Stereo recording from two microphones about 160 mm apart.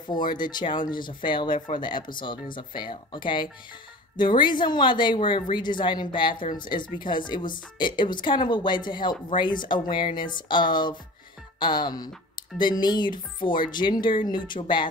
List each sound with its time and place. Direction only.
0.0 s speech: 30° left (ahead or behind)